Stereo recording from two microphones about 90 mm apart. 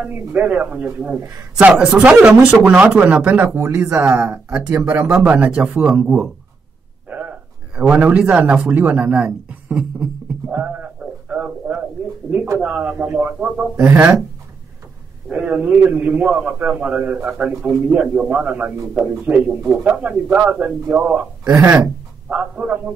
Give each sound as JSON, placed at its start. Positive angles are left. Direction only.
{"t": 0.3, "sound": "speech", "side_deg": -20}
{"t": 5.2, "sound": "a man's voice", "side_deg": -15}
{"t": 10.5, "sound": "a sound", "side_deg": -15}
{"t": 12.5, "sound": "speech", "side_deg": -15}
{"t": 15.2, "sound": "speech", "side_deg": -15}